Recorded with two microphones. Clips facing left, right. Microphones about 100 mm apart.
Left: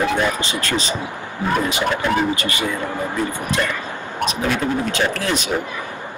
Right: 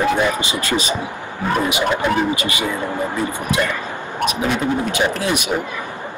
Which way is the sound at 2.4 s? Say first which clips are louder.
Right 1 dB; 15° right (ahead or behind).